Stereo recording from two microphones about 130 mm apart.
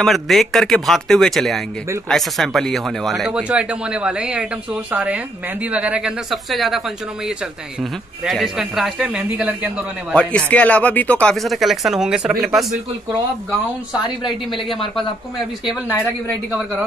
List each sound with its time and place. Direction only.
0.0 s a woman's voice: centre (ahead or behind)
8.3 s speech: centre (ahead or behind)
10.1 s speech: 10° left (ahead or behind)